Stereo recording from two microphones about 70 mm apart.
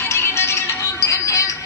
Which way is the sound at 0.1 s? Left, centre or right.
Left.